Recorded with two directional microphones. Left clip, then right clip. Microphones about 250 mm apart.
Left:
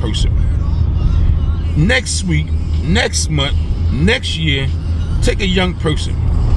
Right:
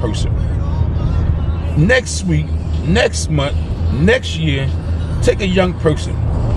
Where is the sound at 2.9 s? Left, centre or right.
Right.